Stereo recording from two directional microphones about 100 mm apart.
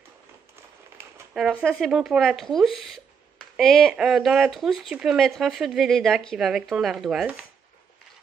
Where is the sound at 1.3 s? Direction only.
10° right (ahead or behind).